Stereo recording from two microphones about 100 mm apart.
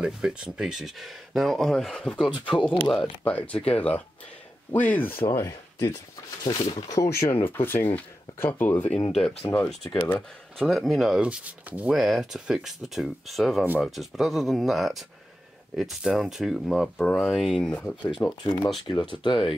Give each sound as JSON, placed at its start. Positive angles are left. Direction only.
{"t": 0.0, "sound": "speech", "side_deg": -10}
{"t": 5.5, "sound": "speech", "side_deg": 40}
{"t": 10.6, "sound": "speech", "side_deg": 0}
{"t": 18.2, "sound": "speech", "side_deg": 30}
{"t": 18.9, "sound": "speech", "side_deg": 55}